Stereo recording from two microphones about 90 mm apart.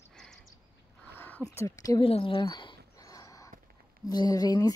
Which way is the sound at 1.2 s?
15° left (ahead or behind).